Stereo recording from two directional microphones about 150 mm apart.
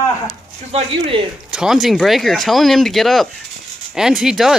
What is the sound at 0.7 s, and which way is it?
Speech, 40° right (ahead or behind).